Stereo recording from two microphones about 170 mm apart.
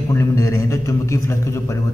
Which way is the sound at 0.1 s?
15° left (ahead or behind).